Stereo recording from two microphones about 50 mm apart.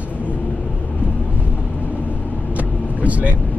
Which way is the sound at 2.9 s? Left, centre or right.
Right.